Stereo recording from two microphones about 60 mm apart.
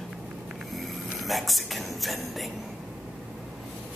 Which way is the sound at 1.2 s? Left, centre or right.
Centre.